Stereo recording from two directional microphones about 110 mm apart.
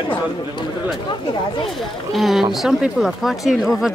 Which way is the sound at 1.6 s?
Centre (ahead or behind).